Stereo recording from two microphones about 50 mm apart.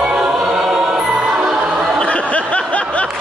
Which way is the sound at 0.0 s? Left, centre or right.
Centre.